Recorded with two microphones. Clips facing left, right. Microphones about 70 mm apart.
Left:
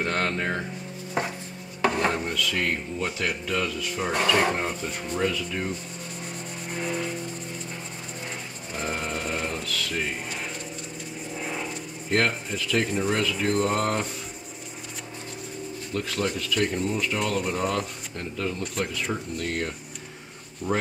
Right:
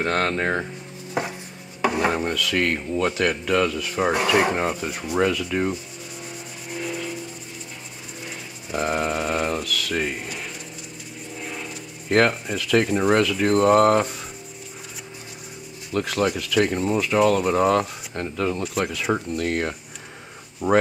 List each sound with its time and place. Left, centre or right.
0.0 s speech: right
0.4 s speech: right
1.8 s chopping: centre
2.2 s speech: right
3.4 s speech: right
4.1 s speech: centre
5.1 s speech: right
6.7 s rub: centre
8.7 s a sound: right
11.4 s a sound: centre
12.1 s speech: right
15.9 s speech: right
20.6 s speech: centre